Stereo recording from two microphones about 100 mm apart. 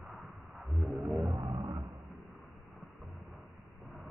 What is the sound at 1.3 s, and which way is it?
Roaring cats, 65° right (ahead or behind).